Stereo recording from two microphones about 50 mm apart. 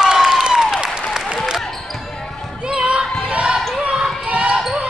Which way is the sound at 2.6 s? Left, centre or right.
Right.